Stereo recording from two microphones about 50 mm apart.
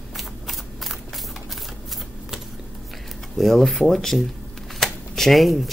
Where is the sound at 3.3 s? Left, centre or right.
Centre.